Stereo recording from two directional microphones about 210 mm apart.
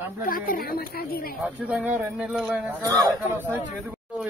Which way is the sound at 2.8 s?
15° right (ahead or behind).